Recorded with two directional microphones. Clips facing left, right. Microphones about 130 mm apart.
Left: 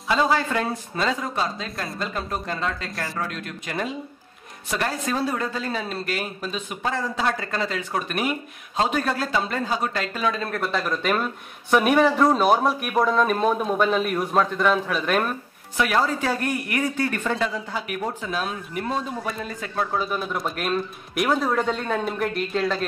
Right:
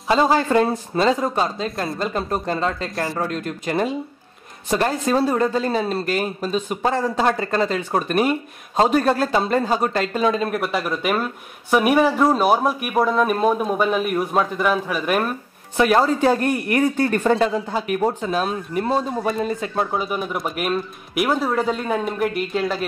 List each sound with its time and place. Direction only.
0.1 s speech: 35° right (ahead or behind)
10.4 s speech: 15° right (ahead or behind)
15.8 s speech: 30° right (ahead or behind); by 22.8 s 5° right (ahead or behind)